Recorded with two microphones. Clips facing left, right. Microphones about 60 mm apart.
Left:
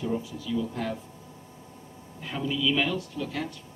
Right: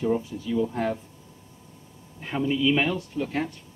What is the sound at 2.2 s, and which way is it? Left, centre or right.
Speech, right.